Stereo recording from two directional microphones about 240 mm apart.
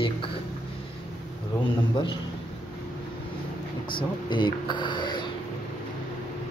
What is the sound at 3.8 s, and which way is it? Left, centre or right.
Speech, centre.